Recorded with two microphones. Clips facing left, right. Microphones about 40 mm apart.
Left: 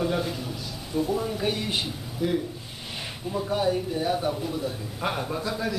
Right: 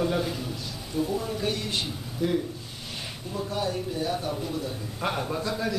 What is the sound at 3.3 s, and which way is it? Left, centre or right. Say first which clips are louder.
A man's voice: left 5 dB; centre.